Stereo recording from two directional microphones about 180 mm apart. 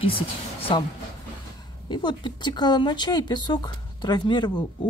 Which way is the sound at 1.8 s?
25° left (ahead or behind).